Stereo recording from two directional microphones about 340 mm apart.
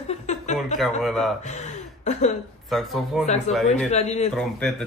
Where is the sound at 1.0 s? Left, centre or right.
Centre.